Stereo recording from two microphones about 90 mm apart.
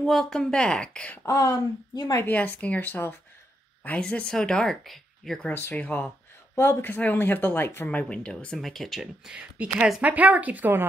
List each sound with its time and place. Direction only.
0.0 s speech: 5° left (ahead or behind)
1.2 s speech: 35° left (ahead or behind)
2.2 s speech: 15° left (ahead or behind)
4.0 s speech: 10° left (ahead or behind)
5.5 s speech: 20° left (ahead or behind); by 10.9 s 20° right (ahead or behind)